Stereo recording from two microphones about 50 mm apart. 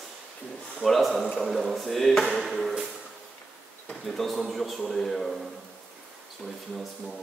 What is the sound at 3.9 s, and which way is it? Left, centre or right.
Speech, centre.